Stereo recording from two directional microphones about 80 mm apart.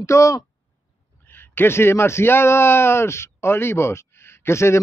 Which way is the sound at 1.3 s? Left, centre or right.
Left.